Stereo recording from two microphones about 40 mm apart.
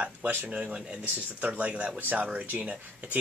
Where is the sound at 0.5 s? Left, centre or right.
Right.